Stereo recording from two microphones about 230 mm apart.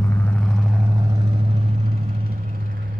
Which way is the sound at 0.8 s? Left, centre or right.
Centre.